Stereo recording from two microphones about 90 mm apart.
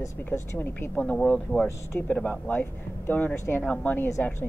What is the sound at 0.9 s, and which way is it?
Speech, 10° left (ahead or behind).